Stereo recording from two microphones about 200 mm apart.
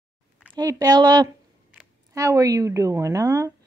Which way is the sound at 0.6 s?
20° right (ahead or behind).